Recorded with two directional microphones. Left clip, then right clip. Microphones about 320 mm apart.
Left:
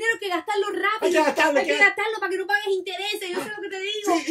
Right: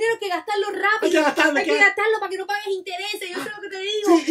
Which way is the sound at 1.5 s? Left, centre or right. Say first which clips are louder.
Right 2 dB; centre.